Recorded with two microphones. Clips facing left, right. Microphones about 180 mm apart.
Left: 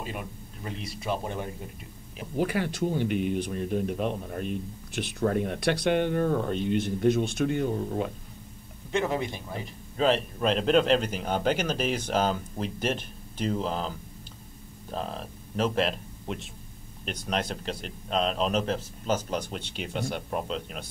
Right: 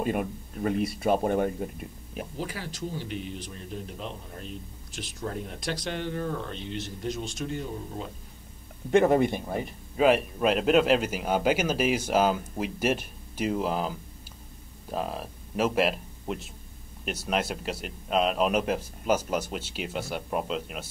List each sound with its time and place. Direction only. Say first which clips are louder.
0.0 s speech: right 8 dB; 50° right (ahead or behind)
2.3 s speech: left 12 dB; 60° left (ahead or behind)
8.9 s speech: right 7 dB; 55° right (ahead or behind)
9.9 s a man's voice: right 3 dB; 10° right (ahead or behind)